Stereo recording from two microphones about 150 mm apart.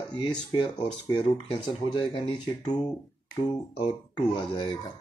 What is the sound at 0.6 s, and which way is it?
Speech, 30° left (ahead or behind).